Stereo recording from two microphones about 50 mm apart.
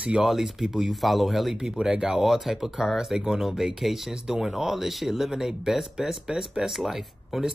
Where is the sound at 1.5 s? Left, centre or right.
Centre.